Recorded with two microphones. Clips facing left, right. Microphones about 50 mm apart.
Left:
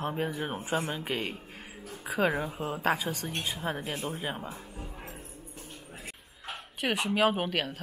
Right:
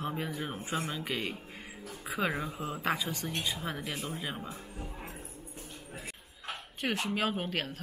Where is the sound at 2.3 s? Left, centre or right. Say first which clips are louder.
Left 4 dB; left.